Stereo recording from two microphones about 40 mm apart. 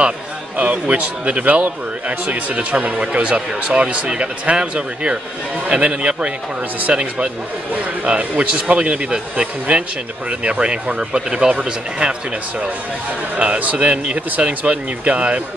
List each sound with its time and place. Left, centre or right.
0.6 s a man's voice: right
8.7 s a man's voice: right
13.4 s speech: right